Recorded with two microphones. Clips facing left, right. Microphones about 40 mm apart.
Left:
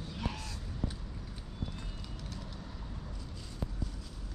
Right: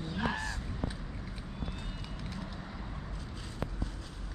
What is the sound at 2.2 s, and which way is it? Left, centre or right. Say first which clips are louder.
Vehicle: right 5 dB; centre.